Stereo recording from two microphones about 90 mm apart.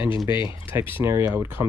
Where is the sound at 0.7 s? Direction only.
25° right (ahead or behind).